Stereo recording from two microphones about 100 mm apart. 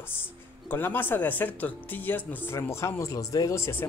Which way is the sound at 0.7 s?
20° left (ahead or behind).